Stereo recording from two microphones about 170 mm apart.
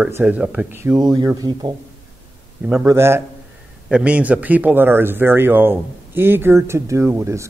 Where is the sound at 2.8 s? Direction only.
15° right (ahead or behind).